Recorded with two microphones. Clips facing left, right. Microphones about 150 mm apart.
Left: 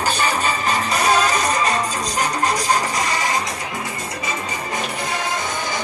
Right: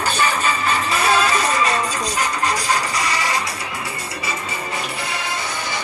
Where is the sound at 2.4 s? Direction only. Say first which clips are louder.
Left 2 dB; 45° left (ahead or behind).